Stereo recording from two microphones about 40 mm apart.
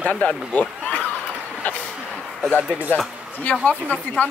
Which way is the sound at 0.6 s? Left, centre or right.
Left.